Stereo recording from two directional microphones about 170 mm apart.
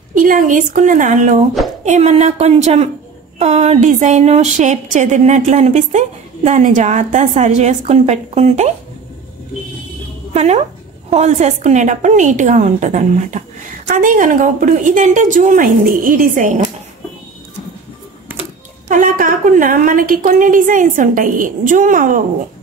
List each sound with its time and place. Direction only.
0.1 s a woman's voice: 50° right (ahead or behind)
10.3 s a woman's voice: 40° right (ahead or behind)
18.9 s a woman's voice: 50° right (ahead or behind)